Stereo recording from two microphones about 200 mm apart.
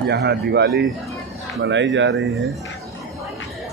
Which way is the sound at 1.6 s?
65° right (ahead or behind).